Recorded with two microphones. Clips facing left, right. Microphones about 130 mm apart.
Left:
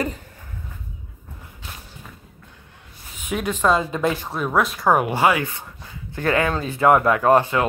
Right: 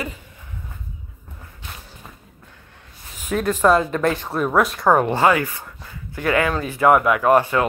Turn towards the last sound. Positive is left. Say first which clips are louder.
# even
turn(degrees=25)  # may be behind; listen again after turning